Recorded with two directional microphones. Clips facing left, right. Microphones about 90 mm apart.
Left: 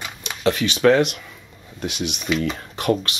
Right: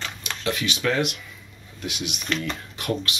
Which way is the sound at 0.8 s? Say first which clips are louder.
Left 10 dB; 40° left (ahead or behind).